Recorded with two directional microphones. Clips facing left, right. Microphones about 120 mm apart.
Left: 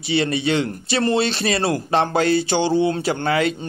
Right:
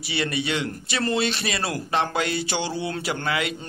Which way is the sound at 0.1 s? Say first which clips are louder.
Left 7 dB; 30° left (ahead or behind).